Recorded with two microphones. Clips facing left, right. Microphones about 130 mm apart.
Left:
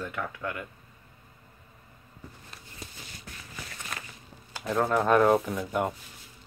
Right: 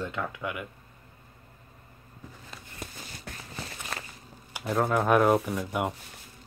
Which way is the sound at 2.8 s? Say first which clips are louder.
Right 4 dB; 55° right (ahead or behind).